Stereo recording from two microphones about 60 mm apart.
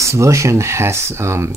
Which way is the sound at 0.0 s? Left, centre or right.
Right.